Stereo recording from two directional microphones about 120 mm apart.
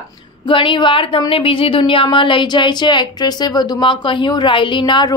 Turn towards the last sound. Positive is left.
turn(degrees=40)  # may be behind; listen again after turning